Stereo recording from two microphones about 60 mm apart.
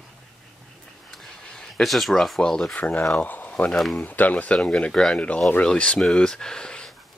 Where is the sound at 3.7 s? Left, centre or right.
Centre.